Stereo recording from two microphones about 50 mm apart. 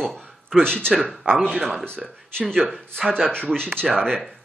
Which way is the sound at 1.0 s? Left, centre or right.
Centre.